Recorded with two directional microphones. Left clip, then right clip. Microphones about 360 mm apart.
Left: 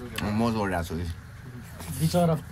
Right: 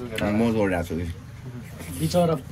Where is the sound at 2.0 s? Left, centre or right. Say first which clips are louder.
Right 3 dB; left.